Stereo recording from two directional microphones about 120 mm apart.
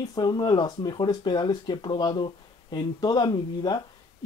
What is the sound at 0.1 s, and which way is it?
Speech, 35° left (ahead or behind).